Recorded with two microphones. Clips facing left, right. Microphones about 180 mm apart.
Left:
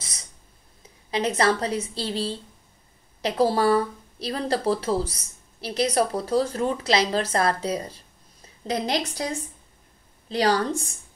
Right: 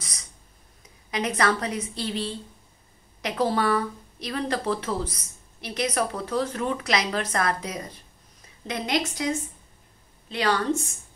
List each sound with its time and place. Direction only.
1.1 s speech: 30° left (ahead or behind)